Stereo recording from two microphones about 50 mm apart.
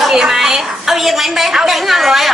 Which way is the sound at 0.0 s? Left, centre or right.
Centre.